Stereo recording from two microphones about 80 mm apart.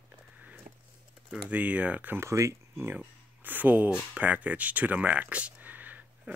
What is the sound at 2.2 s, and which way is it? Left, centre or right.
Speech, right.